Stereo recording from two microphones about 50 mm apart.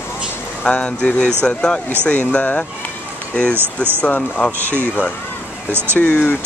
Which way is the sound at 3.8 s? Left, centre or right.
Left.